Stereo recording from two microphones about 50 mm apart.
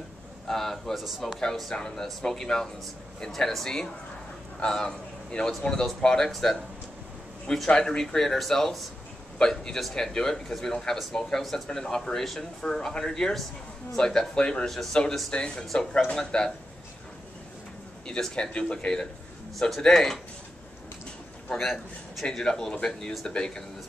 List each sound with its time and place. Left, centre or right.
0.5 s speech: centre
1.7 s a man's voice: centre
6.3 s speech: centre
7.6 s speech: centre
15.3 s speech: left
15.6 s speech: centre
18.3 s speech: centre
21.5 s speech: centre